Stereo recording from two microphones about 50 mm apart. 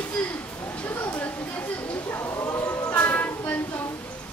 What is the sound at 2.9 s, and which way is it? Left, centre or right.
Music, left.